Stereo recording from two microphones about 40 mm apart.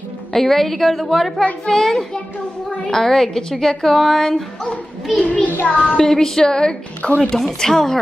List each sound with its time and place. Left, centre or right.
0.3 s a woman's voice: centre
5.2 s child singing: left
5.9 s a woman's voice: centre
7.6 s a woman's voice: centre